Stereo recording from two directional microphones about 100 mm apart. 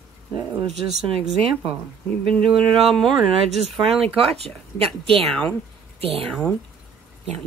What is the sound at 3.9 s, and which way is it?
Speech, 75° right (ahead or behind).